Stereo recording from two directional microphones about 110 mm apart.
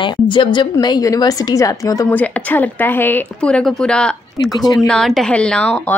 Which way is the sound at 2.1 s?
15° left (ahead or behind).